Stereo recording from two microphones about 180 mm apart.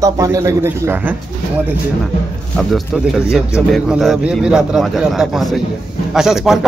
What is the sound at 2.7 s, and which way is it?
Speech, centre (ahead or behind).